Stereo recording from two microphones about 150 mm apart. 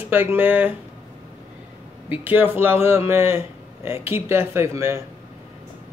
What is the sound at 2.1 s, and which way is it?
A man's voice, 10° right (ahead or behind).